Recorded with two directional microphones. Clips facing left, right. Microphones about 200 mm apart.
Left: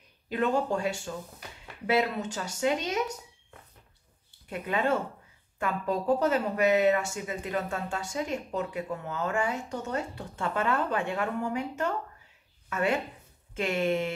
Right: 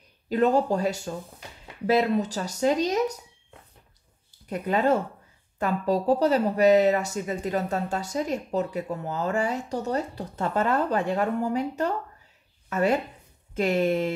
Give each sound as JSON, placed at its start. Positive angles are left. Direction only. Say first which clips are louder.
{"t": 0.3, "sound": "speech", "louder": "right 5 dB", "side_deg": -40}
{"t": 4.5, "sound": "speech", "louder": "right 5 dB", "side_deg": -40}